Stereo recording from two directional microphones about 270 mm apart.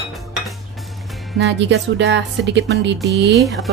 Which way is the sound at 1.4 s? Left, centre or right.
Right.